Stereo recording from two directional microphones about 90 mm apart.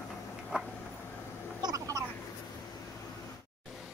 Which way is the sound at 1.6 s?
40° right (ahead or behind).